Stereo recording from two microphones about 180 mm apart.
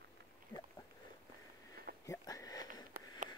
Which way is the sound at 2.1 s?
20° left (ahead or behind).